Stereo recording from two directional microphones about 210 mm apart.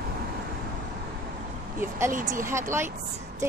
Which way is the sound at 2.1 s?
40° right (ahead or behind).